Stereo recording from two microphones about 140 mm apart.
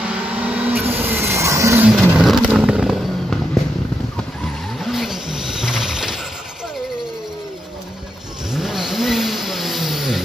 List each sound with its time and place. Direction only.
0.5 s vehicle: 15° right (ahead or behind)
1.9 s vehicle: centre (ahead or behind)
4.7 s vehicle: centre (ahead or behind)
8.5 s vehicle: 5° right (ahead or behind)